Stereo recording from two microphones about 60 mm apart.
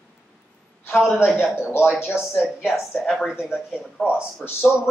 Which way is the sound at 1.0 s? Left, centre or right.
Left.